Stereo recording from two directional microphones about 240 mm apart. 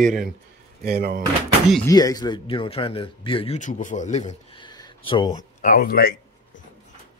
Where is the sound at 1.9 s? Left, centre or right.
Centre.